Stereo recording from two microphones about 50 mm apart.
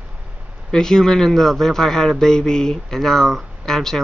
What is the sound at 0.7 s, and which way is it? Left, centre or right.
Speech, centre.